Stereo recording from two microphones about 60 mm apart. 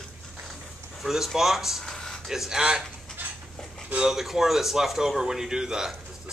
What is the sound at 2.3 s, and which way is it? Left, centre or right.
Speech, centre.